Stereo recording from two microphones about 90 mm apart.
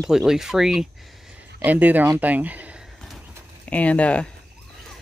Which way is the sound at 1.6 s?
20° right (ahead or behind).